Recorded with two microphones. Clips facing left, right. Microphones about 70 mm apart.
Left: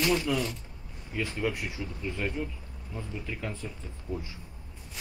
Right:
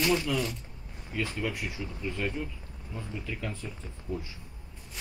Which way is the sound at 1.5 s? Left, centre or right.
Left.